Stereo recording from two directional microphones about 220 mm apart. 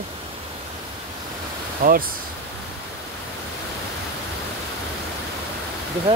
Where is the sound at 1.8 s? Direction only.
40° right (ahead or behind).